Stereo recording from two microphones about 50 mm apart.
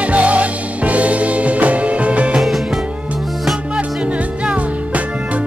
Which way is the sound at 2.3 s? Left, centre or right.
Centre.